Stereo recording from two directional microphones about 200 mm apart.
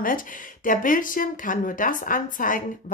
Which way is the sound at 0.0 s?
40° left (ahead or behind).